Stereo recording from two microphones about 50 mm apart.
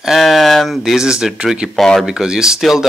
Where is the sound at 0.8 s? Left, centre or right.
Centre.